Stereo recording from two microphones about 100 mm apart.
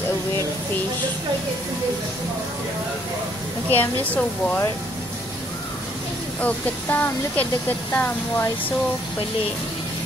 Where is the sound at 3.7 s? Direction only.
15° left (ahead or behind).